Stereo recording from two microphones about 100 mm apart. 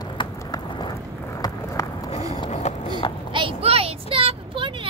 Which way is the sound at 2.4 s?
50° left (ahead or behind).